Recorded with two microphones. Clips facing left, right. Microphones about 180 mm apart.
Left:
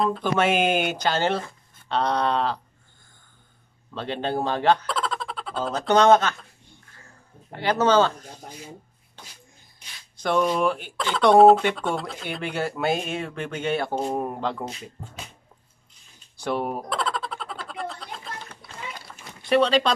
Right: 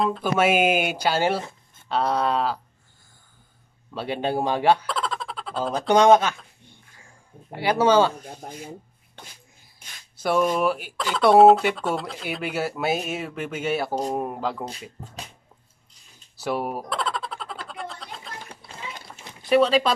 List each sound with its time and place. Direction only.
0.0 s speech: 5° right (ahead or behind)
3.9 s speech: 10° right (ahead or behind)
4.8 s a sound: centre (ahead or behind)
5.7 s speech: 10° right (ahead or behind)
7.5 s speech: 10° right (ahead or behind)
8.4 s speech: 50° right (ahead or behind)
10.1 s speech: 5° right (ahead or behind)
16.3 s a sound: 5° right (ahead or behind)
18.6 s run: 25° right (ahead or behind)
19.4 s speech: centre (ahead or behind)